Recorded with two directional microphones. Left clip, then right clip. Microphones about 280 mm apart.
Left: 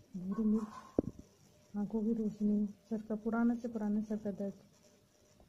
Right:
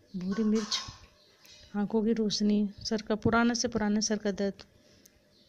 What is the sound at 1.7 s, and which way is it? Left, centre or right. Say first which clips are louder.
A woman's voice: right 8 dB; right.